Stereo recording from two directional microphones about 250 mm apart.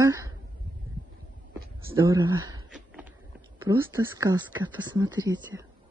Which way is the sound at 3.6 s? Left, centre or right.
Centre.